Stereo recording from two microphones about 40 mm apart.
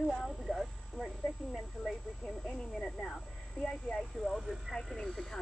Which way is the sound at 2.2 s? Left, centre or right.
Centre.